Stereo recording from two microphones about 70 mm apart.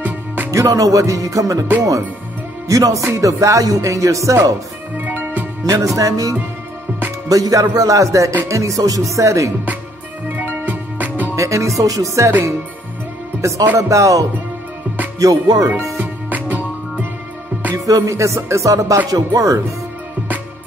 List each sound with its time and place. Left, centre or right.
0.5 s music: right
2.7 s speech: right
3.2 s music: right
4.9 s music: right
5.9 s speech: right
7.2 s music: right
10.2 s music: right
11.3 s music: right
13.4 s speech: right
13.7 s music: right
15.1 s speech: right
16.0 s music: right
17.7 s music: right
19.0 s speech: right